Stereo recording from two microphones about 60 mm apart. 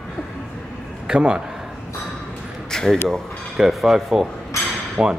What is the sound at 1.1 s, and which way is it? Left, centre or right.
Speech, centre.